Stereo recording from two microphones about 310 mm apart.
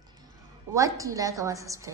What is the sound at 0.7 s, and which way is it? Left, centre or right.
A woman's voice, centre.